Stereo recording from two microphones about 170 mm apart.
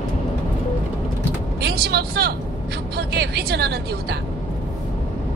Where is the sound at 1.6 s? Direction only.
70° right (ahead or behind).